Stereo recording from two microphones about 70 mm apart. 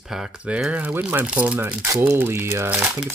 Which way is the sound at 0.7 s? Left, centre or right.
Right.